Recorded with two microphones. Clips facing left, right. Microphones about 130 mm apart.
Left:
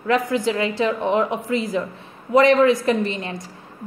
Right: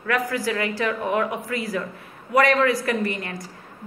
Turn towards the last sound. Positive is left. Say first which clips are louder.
# left 4 dB
turn(degrees=20)  # may be behind; listen again after turning